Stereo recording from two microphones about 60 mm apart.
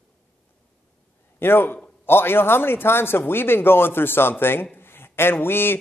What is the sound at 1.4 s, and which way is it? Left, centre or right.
A man's voice, left.